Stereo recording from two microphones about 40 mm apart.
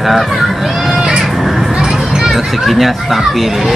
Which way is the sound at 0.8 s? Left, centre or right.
Centre.